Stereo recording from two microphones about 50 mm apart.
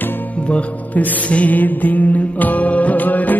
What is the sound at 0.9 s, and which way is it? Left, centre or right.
Music, left.